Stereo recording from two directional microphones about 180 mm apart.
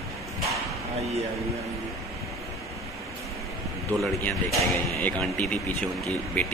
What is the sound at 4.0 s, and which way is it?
A man's voice, 5° left (ahead or behind).